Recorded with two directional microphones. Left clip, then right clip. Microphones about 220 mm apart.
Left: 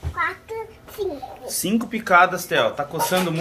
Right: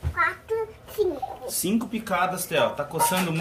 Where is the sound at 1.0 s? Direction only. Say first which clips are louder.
Right 2 dB; 30° right (ahead or behind).